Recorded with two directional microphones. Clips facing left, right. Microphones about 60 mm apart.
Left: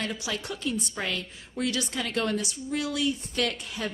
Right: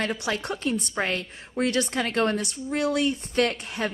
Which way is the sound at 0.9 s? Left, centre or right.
Right.